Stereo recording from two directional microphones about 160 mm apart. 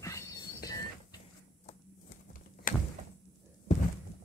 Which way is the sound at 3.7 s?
50° left (ahead or behind).